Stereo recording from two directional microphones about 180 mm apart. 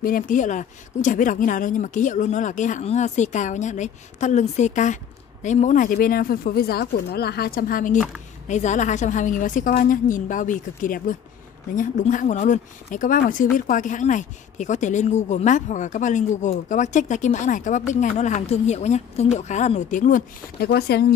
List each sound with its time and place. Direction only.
0.0 s speech: 50° left (ahead or behind)